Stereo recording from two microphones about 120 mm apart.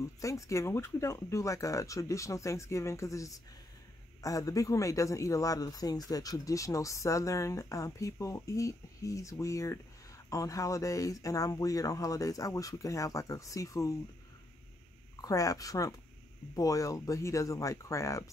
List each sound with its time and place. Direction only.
0.0 s a man's voice: 25° left (ahead or behind)
15.2 s a man's voice: 30° left (ahead or behind)